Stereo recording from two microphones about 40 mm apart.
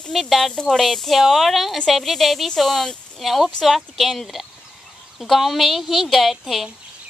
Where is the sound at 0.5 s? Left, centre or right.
Centre.